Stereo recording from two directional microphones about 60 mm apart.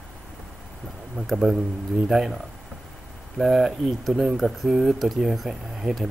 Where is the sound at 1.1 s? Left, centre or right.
Centre.